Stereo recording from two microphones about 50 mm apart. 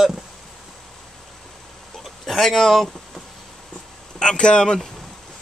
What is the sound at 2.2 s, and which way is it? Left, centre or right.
Speech, centre.